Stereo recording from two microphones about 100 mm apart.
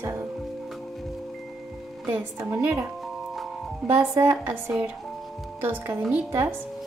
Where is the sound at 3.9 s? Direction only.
30° right (ahead or behind).